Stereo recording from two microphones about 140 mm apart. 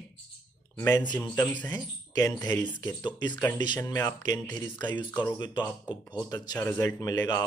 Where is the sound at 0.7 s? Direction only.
25° left (ahead or behind).